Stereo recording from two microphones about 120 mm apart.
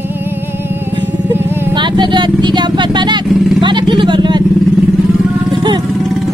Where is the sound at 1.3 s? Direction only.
20° right (ahead or behind).